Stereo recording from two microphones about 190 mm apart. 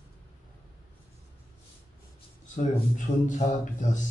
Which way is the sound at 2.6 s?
40° left (ahead or behind).